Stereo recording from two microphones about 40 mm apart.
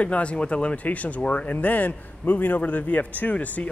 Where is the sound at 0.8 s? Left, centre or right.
Left.